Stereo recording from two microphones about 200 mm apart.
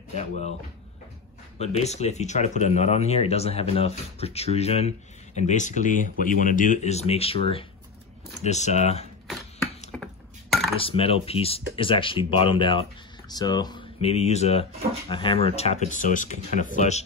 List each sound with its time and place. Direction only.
0.1 s speech: 35° left (ahead or behind)
1.6 s speech: 30° left (ahead or behind)
9.9 s a sound: 5° left (ahead or behind)
10.8 s speech: 30° left (ahead or behind)